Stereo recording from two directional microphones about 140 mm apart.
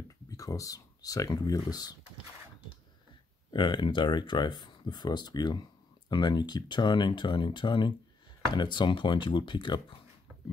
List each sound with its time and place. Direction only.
0.3 s speech: 25° left (ahead or behind)
3.5 s speech: 35° left (ahead or behind)